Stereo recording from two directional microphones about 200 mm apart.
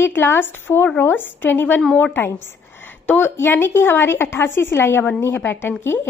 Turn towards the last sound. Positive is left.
turn(degrees=10)  # may be behind; listen again after turning